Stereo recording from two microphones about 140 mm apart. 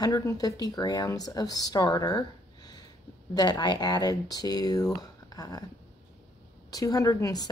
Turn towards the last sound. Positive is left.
turn(degrees=25)  # may be behind; listen again after turning